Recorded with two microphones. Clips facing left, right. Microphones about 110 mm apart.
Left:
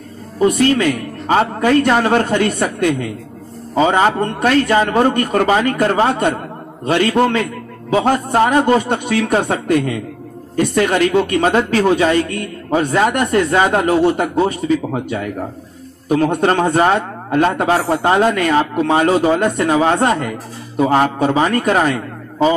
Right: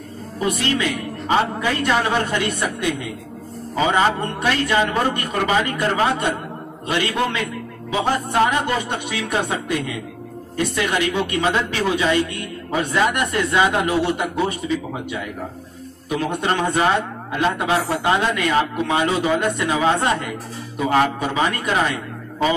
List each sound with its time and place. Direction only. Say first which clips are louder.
0.4 s speech: left 8 dB; 45° left (ahead or behind)
0.9 s music: left 3 dB; centre (ahead or behind)
1.6 s speech: left 7 dB; 45° left (ahead or behind)
3.7 s a man's voice: left 5 dB; 30° left (ahead or behind)